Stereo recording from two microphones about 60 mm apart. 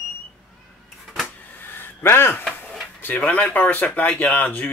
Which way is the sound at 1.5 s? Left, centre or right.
Left.